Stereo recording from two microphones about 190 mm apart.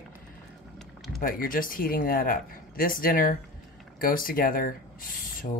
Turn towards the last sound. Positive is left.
turn(degrees=45)  # may be behind; listen again after turning